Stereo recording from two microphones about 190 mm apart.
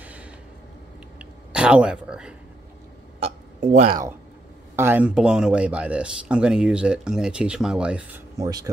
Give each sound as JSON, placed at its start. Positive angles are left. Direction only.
{"t": 0.0, "sound": "a sound", "side_deg": -5}
{"t": 1.5, "sound": "speech", "side_deg": -5}
{"t": 3.6, "sound": "speech", "side_deg": -35}
{"t": 4.7, "sound": "speech", "side_deg": -10}